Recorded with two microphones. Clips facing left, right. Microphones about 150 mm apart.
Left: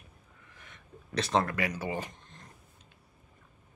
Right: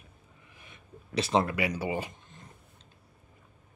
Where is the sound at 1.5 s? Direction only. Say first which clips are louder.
Right 2 dB; 15° right (ahead or behind).